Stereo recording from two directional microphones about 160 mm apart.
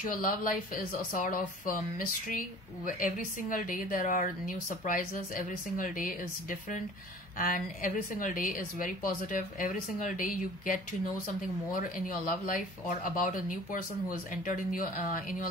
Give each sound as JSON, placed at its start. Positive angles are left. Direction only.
{"t": 0.1, "sound": "speech", "side_deg": 60}